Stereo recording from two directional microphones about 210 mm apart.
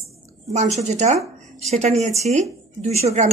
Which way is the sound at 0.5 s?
30° right (ahead or behind).